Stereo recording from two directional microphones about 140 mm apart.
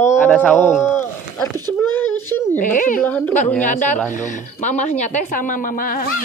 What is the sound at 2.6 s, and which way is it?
Speech, 70° left (ahead or behind).